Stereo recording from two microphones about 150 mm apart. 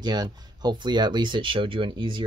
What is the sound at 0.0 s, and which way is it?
Speech, 25° right (ahead or behind).